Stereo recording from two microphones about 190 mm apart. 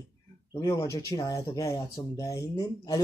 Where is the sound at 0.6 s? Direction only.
20° left (ahead or behind).